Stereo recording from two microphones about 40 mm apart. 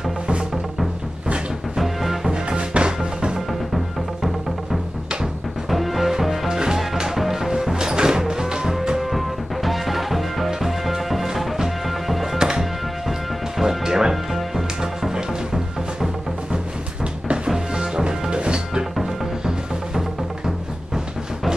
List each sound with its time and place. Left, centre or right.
1.8 s music: centre
2.3 s music: right
3.3 s music: centre
5.7 s music: centre
9.1 s music: centre
17.7 s music: right
20.0 s music: centre